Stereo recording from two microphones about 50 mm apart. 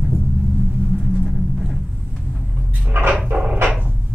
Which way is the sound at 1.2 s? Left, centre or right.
Centre.